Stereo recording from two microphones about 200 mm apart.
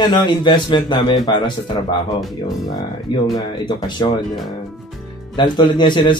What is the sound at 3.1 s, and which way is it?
A man's voice, 20° left (ahead or behind).